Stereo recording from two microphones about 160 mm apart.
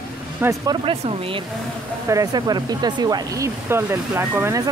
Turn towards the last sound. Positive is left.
turn(degrees=-15)  # may be behind; listen again after turning